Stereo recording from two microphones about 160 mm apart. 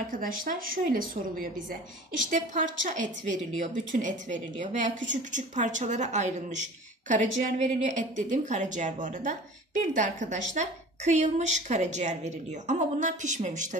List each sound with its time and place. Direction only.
0.1 s a woman's voice: 60° right (ahead or behind)